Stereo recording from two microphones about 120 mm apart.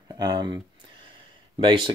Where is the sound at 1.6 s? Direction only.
40° right (ahead or behind).